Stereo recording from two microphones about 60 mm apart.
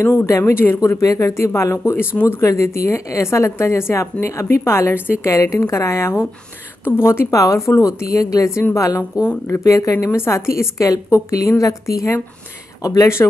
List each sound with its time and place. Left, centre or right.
0.4 s speech: left
0.8 s a woman's voice: left
1.3 s a woman's voice: left
2.4 s a woman's voice: left
5.2 s a woman's voice: left
6.8 s a woman's voice: left
7.3 s a woman's voice: left
8.2 s a woman's voice: left
9.5 s a woman's voice: left
12.8 s a woman's voice: left